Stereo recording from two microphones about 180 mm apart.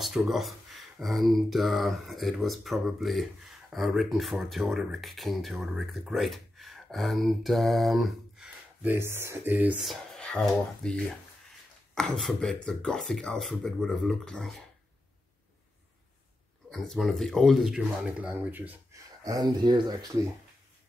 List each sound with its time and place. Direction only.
0.0 s speech: centre (ahead or behind)
16.7 s speech: centre (ahead or behind)
19.2 s speech: 20° right (ahead or behind)